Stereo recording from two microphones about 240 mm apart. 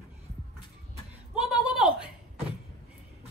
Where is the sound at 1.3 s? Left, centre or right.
Centre.